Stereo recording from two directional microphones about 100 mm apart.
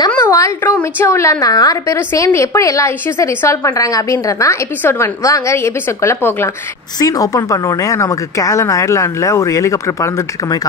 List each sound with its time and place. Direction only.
0.2 s a sound: 30° left (ahead or behind)
1.0 s a woman's voice: 30° left (ahead or behind)
7.0 s speech: 40° left (ahead or behind)